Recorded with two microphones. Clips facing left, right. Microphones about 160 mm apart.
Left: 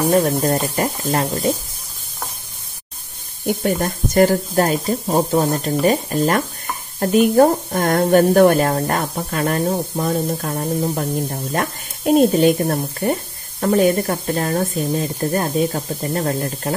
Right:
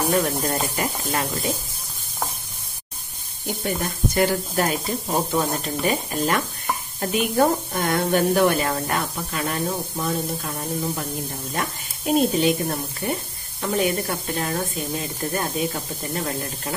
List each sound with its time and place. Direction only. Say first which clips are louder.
0.1 s speech: left 6 dB; 40° left (ahead or behind)
3.6 s speech: left 3 dB; 45° left (ahead or behind)